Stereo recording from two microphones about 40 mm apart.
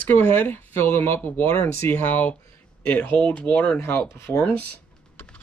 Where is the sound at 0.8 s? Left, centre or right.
Left.